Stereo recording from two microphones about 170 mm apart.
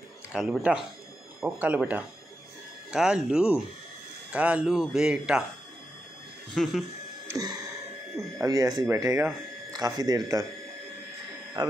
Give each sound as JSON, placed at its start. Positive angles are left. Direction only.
{"t": 0.3, "sound": "speech", "side_deg": -5}
{"t": 6.5, "sound": "speech", "side_deg": 0}
{"t": 8.4, "sound": "speech", "side_deg": -20}